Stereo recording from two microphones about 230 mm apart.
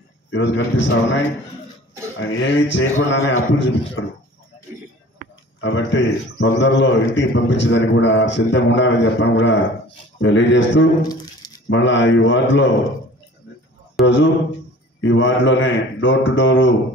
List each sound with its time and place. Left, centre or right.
0.3 s a man's voice: left
5.9 s a man's voice: left
11.1 s a sound: centre
11.7 s a man's voice: left
14.0 s a man's voice: left